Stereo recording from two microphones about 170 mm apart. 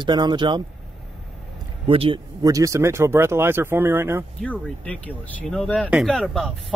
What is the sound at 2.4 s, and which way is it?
Speech, 20° right (ahead or behind).